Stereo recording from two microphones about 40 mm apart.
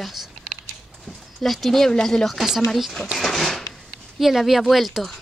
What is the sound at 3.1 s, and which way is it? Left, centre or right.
Drawer open or close, centre.